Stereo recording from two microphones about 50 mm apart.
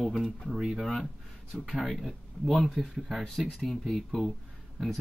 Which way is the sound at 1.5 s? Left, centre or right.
Centre.